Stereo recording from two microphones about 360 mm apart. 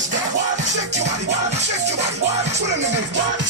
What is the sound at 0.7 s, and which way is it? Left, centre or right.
Music, right.